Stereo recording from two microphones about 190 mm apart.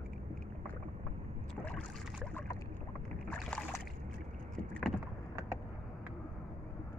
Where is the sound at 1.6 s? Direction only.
5° left (ahead or behind).